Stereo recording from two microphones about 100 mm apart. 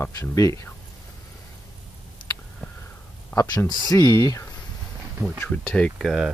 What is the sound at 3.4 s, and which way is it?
Speech, 35° left (ahead or behind).